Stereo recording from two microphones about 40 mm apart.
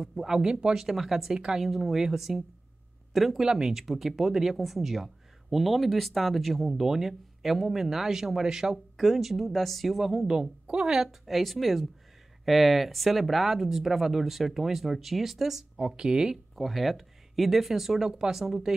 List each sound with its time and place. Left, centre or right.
0.0 s speech: centre
3.1 s a sound: centre
3.3 s speech: centre
10.2 s speech: centre
11.2 s speech: centre
15.8 s speech: centre
16.5 s speech: centre